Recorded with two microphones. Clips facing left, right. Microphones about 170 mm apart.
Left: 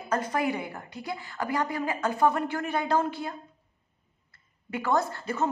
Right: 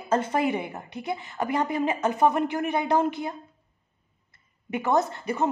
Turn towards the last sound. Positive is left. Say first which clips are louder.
# right 3 dB
turn(degrees=-15)  # may be behind; listen again after turning